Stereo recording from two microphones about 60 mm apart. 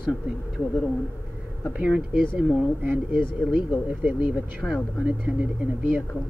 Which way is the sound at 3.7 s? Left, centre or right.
Right.